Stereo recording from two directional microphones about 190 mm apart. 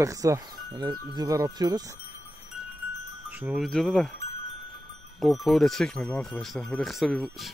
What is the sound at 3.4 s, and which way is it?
Speech, 5° right (ahead or behind).